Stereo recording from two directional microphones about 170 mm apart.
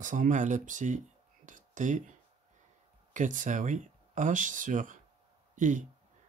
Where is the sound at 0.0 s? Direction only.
50° right (ahead or behind).